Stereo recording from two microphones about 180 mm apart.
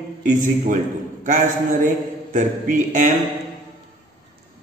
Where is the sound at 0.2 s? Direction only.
45° right (ahead or behind).